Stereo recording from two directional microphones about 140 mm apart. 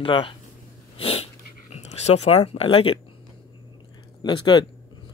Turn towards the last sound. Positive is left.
turn(degrees=30)  # may be behind; listen again after turning